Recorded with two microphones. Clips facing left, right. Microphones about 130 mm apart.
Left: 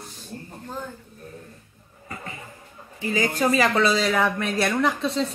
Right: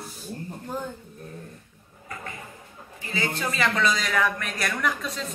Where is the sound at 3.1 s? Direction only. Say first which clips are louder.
Left 7 dB; 40° left (ahead or behind).